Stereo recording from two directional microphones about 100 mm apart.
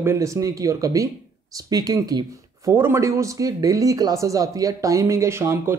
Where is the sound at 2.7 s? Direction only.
25° right (ahead or behind).